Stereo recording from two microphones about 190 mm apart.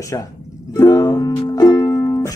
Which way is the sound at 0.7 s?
20° left (ahead or behind).